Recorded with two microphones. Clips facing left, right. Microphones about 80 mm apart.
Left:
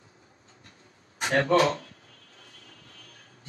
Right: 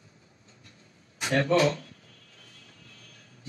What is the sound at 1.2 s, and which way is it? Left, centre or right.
Speech, left.